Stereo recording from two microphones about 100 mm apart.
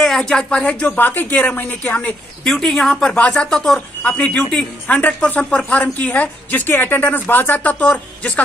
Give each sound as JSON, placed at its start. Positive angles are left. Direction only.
{"t": 0.0, "sound": "speech", "side_deg": 5}
{"t": 2.4, "sound": "speech", "side_deg": 5}